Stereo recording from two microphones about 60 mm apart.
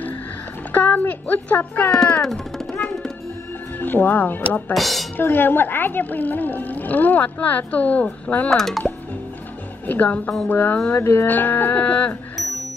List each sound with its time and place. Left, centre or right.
0.7 s speech: left
1.9 s speech: centre
2.2 s music: centre
3.8 s speech: left
4.7 s speech: centre
5.1 s speech: left
8.5 s speech: centre
9.8 s speech: left
11.0 s speech: left